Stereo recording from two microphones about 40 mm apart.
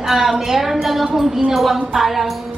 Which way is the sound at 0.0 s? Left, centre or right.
Centre.